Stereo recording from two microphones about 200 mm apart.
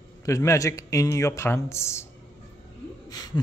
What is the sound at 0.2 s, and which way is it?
Speech, 15° left (ahead or behind).